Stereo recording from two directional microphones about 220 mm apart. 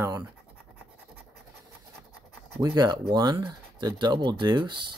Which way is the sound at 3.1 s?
20° right (ahead or behind).